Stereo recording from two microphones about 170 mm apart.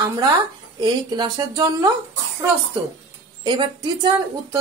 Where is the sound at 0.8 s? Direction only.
25° right (ahead or behind).